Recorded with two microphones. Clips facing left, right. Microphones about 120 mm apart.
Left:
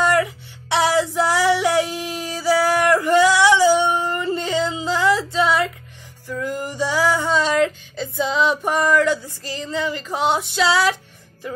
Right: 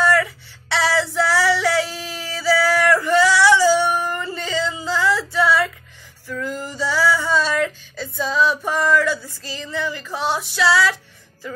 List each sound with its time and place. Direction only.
0.0 s music: 15° left (ahead or behind)
2.0 s male singing: 15° left (ahead or behind)
6.2 s music: 15° left (ahead or behind)